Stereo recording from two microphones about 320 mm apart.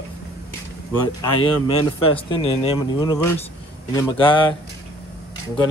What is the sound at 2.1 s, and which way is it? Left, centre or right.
Speech, centre.